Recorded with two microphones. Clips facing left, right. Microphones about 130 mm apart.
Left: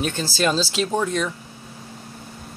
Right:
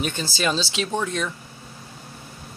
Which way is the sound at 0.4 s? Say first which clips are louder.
Left 4 dB; 5° left (ahead or behind).